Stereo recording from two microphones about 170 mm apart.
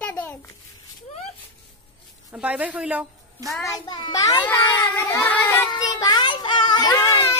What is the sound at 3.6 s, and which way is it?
A child's voice, 25° left (ahead or behind).